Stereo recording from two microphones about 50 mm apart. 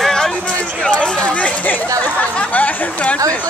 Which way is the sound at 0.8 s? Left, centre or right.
Left.